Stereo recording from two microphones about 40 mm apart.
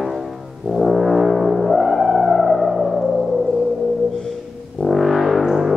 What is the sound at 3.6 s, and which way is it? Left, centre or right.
Music, centre.